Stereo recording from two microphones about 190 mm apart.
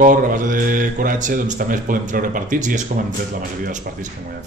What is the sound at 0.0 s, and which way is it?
Speech, 45° right (ahead or behind).